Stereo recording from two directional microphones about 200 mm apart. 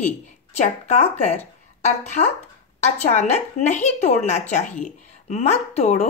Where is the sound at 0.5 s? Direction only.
35° left (ahead or behind).